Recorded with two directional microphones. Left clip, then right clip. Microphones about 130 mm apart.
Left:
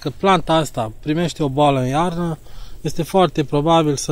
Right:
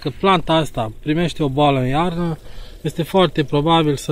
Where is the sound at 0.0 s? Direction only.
15° left (ahead or behind).